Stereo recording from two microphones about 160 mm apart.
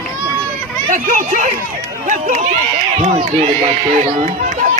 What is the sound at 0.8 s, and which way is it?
Speech, 55° right (ahead or behind).